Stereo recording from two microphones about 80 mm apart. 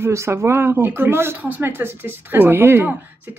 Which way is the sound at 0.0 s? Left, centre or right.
Right.